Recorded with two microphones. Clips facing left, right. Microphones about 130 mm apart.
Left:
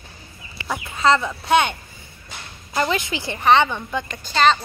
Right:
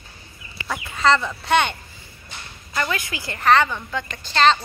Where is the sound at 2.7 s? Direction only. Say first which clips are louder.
Left 4 dB; 25° left (ahead or behind).